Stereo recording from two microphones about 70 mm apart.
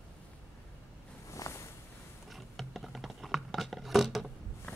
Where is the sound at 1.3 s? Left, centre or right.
Left.